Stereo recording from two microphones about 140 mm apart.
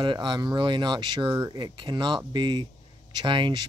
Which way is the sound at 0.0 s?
35° right (ahead or behind).